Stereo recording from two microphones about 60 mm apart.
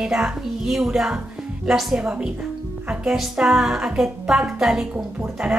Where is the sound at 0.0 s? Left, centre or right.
Centre.